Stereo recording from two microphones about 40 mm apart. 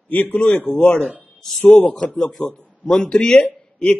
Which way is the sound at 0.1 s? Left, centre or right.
Left.